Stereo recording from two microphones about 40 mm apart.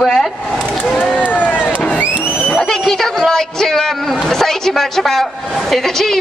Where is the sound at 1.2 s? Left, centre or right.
Left.